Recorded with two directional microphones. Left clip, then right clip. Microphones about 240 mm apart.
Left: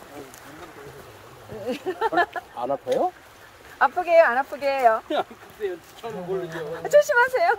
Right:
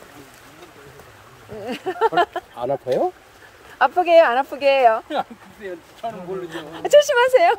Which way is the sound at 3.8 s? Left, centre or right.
Right.